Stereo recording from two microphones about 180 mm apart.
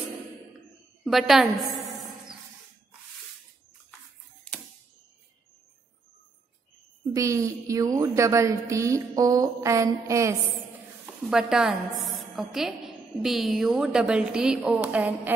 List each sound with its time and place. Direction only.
1.0 s a woman's voice: centre (ahead or behind)
7.2 s a woman's voice: 15° right (ahead or behind)
11.2 s a woman's voice: 5° right (ahead or behind)